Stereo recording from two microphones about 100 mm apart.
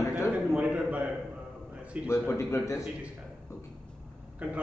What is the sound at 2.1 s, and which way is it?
Speech, 25° left (ahead or behind).